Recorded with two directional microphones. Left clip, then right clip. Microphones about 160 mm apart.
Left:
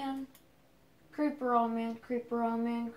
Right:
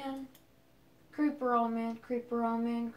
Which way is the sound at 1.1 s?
15° left (ahead or behind).